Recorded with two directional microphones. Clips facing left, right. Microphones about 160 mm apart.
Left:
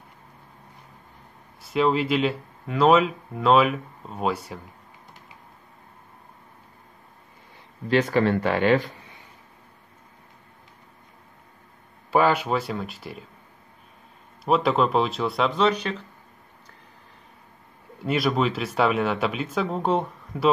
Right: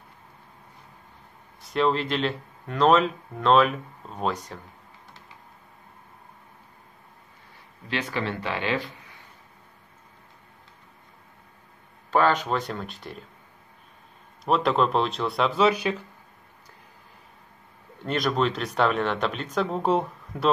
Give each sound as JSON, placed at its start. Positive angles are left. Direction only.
{"t": 1.6, "sound": "speech", "side_deg": 5}
{"t": 7.9, "sound": "speech", "side_deg": 45}
{"t": 12.1, "sound": "speech", "side_deg": 10}
{"t": 14.4, "sound": "speech", "side_deg": 0}
{"t": 18.0, "sound": "speech", "side_deg": 5}